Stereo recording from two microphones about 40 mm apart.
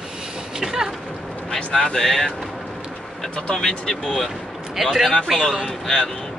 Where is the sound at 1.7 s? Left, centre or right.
Centre.